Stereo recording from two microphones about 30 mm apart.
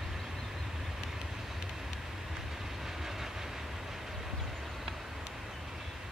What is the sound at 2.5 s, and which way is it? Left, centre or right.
Train, centre.